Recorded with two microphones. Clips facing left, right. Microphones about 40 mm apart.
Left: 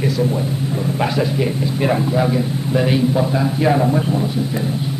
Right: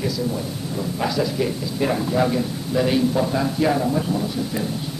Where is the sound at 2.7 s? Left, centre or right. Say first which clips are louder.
Left 2 dB; centre.